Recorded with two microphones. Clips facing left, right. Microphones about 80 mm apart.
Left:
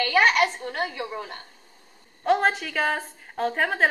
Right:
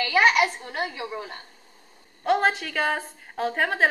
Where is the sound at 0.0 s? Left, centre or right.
Centre.